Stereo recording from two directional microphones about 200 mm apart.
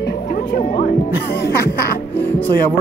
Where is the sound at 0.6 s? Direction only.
40° left (ahead or behind).